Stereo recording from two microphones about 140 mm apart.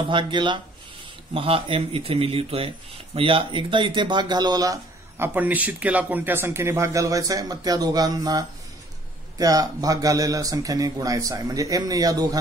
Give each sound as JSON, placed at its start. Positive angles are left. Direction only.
{"t": 0.1, "sound": "speech", "side_deg": -35}